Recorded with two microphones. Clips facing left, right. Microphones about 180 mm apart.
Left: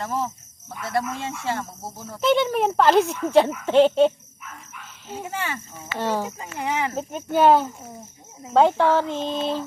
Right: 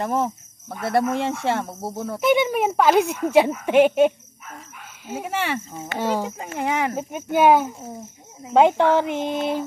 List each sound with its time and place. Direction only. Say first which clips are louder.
0.0 s speech: right 4 dB; 60° right (ahead or behind)
2.1 s speech: right 1 dB; 10° right (ahead or behind)
5.3 s speech: right 7 dB; 75° right (ahead or behind)
5.9 s speech: right 1 dB; 15° right (ahead or behind)
6.3 s speech: right 3 dB; 55° right (ahead or behind)
7.0 s speech: left 1 dB; 15° right (ahead or behind)